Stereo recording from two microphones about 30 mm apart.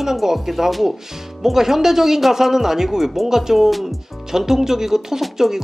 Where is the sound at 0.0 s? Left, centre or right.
Centre.